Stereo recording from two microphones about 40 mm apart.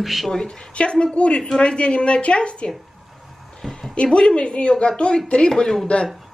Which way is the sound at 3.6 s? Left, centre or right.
Centre.